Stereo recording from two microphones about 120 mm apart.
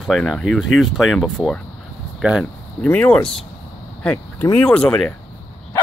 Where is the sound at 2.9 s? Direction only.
15° left (ahead or behind).